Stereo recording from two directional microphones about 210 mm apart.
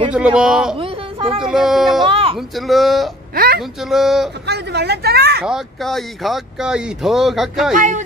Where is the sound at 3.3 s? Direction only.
45° right (ahead or behind).